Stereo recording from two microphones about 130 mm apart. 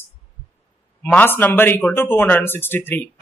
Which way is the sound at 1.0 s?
15° left (ahead or behind).